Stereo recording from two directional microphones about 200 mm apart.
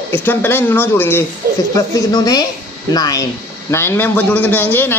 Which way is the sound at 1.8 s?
20° left (ahead or behind).